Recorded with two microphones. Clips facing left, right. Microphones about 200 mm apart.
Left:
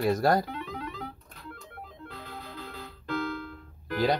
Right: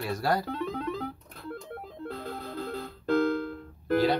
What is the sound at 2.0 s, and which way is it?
Music, 45° right (ahead or behind).